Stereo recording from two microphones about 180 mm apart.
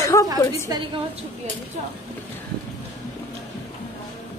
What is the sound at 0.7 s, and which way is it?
Speech, 20° right (ahead or behind).